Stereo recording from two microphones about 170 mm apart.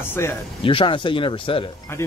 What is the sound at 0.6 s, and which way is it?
Speech, 30° left (ahead or behind).